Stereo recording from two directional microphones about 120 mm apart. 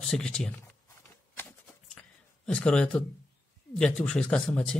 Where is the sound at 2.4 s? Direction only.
10° left (ahead or behind).